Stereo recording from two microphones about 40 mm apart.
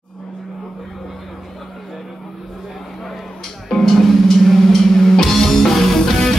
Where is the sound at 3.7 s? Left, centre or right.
Centre.